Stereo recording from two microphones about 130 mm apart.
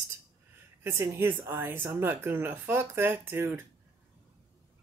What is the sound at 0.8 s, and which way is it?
Speech, 20° right (ahead or behind).